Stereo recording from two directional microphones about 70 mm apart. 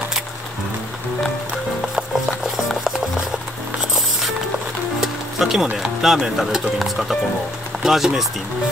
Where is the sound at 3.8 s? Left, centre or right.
Centre.